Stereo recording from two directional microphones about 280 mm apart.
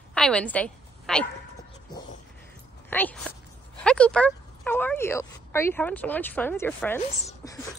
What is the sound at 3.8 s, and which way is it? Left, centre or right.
A woman's voice, centre.